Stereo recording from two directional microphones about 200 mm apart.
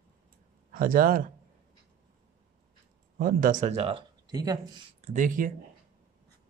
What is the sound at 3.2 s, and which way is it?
Speech, 45° right (ahead or behind).